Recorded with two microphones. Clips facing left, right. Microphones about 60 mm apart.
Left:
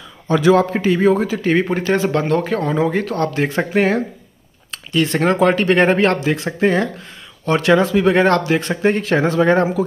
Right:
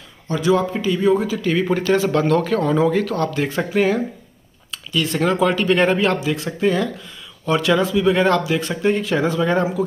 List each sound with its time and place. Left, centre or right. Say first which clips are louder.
0.5 s a man's voice: left 4 dB; left
0.7 s speech: left 3 dB; left
7.8 s speech: left 3 dB; left